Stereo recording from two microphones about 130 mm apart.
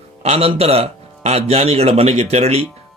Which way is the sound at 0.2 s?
50° right (ahead or behind).